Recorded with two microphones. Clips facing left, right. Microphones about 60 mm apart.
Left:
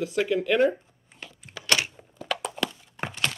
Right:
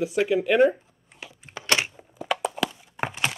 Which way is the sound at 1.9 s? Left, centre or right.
Centre.